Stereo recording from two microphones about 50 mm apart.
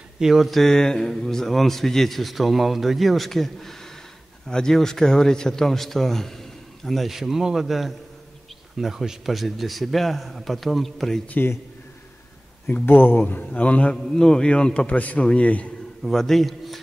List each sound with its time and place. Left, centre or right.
0.2 s speech: centre
0.5 s a man's voice: centre
12.6 s speech: left
13.4 s a man's voice: left
14.1 s a man's voice: centre
16.0 s a man's voice: centre